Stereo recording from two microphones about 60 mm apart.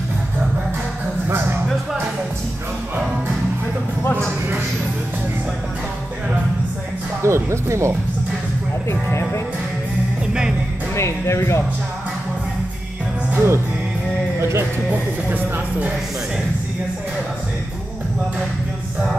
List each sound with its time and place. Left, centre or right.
7.2 s speech: right
11.0 s speech: left
13.3 s music: right
14.9 s speech: right